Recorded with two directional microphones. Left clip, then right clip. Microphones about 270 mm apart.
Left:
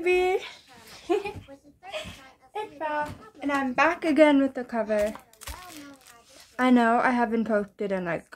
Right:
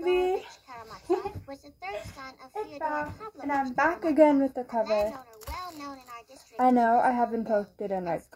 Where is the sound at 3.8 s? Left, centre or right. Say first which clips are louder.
Left 2 dB; centre.